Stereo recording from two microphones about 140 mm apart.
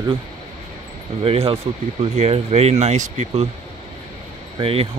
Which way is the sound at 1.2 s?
40° right (ahead or behind).